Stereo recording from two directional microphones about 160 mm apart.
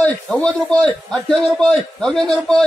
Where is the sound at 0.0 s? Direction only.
5° left (ahead or behind).